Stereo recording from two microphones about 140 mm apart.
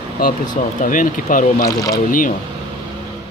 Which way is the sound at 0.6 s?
70° left (ahead or behind).